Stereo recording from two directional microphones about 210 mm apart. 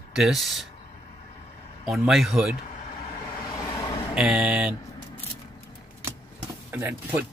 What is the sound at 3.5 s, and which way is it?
Vehicle, 15° left (ahead or behind).